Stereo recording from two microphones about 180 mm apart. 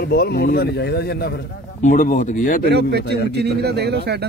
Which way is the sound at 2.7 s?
65° right (ahead or behind).